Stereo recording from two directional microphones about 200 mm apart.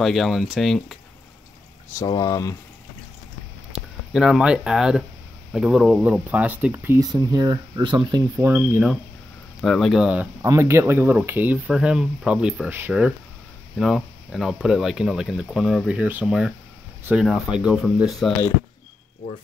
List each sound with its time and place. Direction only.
0.0 s speech: centre (ahead or behind)
2.0 s speech: 20° left (ahead or behind)
3.7 s speech: centre (ahead or behind)
9.6 s speech: centre (ahead or behind)